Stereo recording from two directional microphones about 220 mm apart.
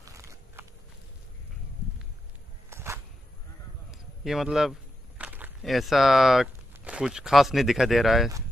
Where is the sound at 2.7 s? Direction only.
10° right (ahead or behind).